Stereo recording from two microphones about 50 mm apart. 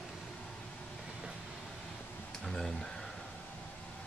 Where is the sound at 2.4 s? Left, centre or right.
Centre.